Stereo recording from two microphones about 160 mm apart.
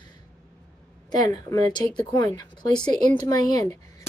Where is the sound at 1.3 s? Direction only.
25° left (ahead or behind).